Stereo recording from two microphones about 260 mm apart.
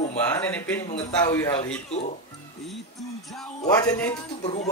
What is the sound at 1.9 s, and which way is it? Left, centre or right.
Speech, left.